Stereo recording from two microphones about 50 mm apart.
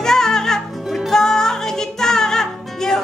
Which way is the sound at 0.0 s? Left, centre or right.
Centre.